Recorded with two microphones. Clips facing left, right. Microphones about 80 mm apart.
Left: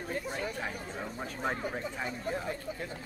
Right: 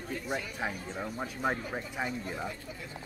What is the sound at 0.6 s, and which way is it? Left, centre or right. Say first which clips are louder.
Speech: right 2 dB; centre.